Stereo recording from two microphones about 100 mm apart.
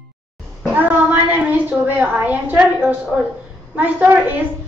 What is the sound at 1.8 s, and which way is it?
Speech, 15° right (ahead or behind).